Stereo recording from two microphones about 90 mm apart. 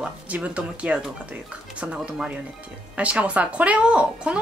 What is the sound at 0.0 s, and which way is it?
A woman's voice, 15° right (ahead or behind).